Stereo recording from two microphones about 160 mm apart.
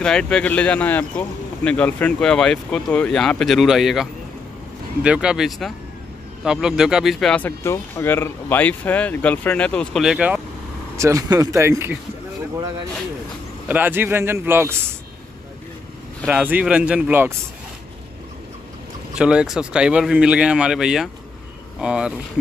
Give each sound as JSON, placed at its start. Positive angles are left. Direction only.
{"t": 0.0, "sound": "speech", "side_deg": 5}
{"t": 11.0, "sound": "speech", "side_deg": -20}
{"t": 13.7, "sound": "a man's voice", "side_deg": -10}
{"t": 16.3, "sound": "a man's voice", "side_deg": -10}
{"t": 19.1, "sound": "speech", "side_deg": -5}